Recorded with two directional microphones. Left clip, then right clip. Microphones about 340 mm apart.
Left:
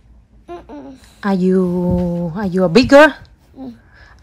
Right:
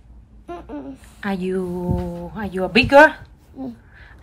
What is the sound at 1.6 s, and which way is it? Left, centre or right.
Speech, right.